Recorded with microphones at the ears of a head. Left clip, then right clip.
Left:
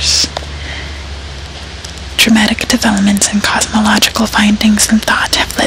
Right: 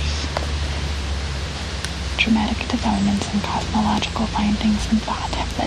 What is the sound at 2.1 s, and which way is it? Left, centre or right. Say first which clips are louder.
Speech: left 11 dB; left.